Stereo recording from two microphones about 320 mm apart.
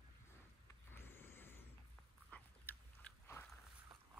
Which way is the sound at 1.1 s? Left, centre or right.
Centre.